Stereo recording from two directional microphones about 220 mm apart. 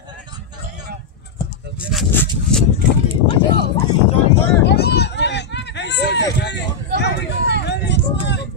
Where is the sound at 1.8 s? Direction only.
Centre (ahead or behind).